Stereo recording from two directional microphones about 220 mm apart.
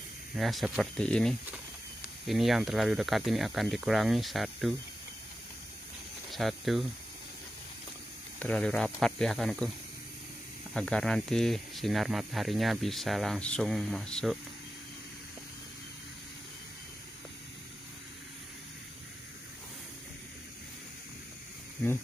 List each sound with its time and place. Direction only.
0.4 s speech: centre (ahead or behind)
6.3 s speech: centre (ahead or behind)
8.4 s speech: 5° left (ahead or behind)
10.7 s speech: 5° left (ahead or behind)